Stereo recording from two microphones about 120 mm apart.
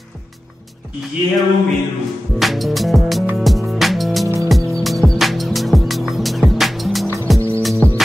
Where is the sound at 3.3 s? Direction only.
Centre (ahead or behind).